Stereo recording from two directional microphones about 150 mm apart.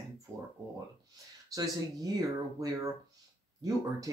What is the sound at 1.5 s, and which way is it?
Speech, 25° right (ahead or behind).